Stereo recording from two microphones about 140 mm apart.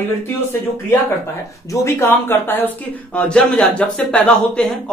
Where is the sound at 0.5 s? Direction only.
20° left (ahead or behind).